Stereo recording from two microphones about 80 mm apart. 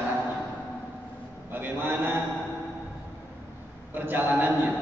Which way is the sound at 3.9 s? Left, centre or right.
Right.